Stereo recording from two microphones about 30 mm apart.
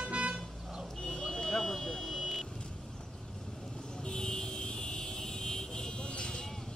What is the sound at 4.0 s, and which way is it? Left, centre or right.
Vehicle, left.